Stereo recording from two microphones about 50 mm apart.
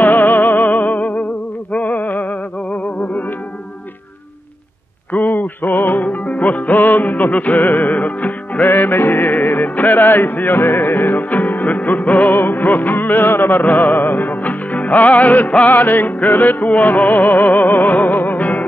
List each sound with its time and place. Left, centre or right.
0.0 s music: left
5.3 s music: left
6.0 s music: left
8.6 s music: left
12.3 s music: left